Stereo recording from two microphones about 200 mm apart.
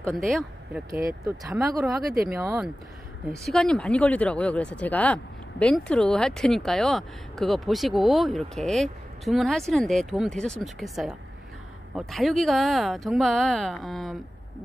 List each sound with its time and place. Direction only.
0.1 s speech: centre (ahead or behind)
0.8 s speech: 15° right (ahead or behind)
1.4 s speech: centre (ahead or behind)
2.3 s speech: 15° right (ahead or behind)
3.4 s speech: 5° left (ahead or behind)